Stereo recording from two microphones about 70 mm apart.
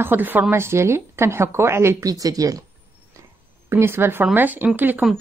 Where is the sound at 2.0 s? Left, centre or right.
Right.